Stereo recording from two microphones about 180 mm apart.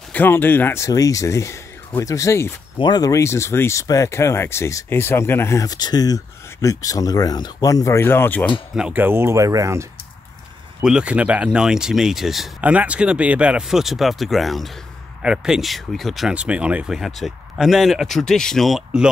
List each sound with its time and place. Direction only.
0.1 s speech: 10° left (ahead or behind)
8.7 s speech: 5° right (ahead or behind)
10.8 s speech: 5° right (ahead or behind)